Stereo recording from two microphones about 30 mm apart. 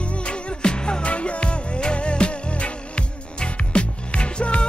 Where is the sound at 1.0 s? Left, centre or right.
Left.